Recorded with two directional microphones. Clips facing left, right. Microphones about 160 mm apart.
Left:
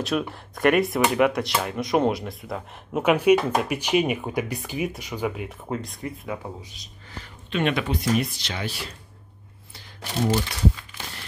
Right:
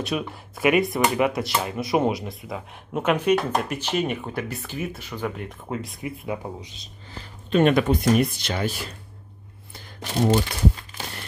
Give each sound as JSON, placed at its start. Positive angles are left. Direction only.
{"t": 0.0, "sound": "speech", "side_deg": 0}
{"t": 6.2, "sound": "speech", "side_deg": -15}
{"t": 7.5, "sound": "speech", "side_deg": -45}